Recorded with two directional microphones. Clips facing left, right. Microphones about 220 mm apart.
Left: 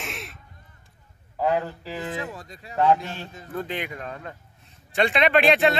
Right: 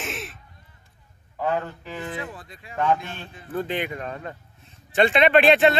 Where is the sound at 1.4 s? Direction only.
35° left (ahead or behind).